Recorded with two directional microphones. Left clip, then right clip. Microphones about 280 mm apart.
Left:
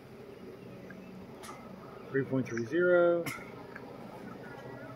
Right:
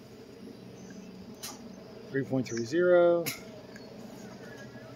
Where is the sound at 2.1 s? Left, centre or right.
Right.